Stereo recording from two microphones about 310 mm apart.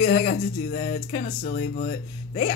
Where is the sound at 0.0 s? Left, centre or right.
Left.